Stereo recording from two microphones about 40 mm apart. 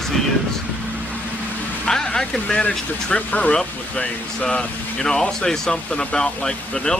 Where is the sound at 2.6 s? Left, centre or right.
Left.